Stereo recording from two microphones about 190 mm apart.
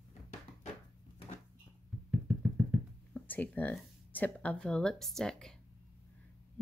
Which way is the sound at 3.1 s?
10° left (ahead or behind).